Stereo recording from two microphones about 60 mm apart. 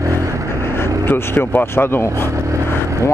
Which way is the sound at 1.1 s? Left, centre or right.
Left.